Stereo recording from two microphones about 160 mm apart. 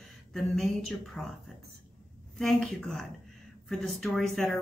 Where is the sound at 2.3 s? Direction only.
Centre (ahead or behind).